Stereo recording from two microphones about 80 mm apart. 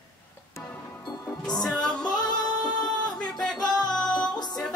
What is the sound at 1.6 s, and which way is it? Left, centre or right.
Music, centre.